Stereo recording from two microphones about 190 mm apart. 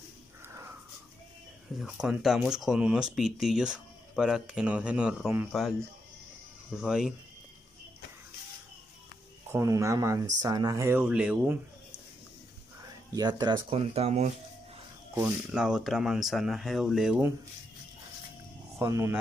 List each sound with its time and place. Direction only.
0.5 s a sound: 15° right (ahead or behind)
1.8 s speech: centre (ahead or behind)
9.5 s speech: 15° right (ahead or behind)
12.8 s speech: 20° right (ahead or behind)
15.1 s speech: 5° right (ahead or behind)
18.8 s speech: 15° right (ahead or behind)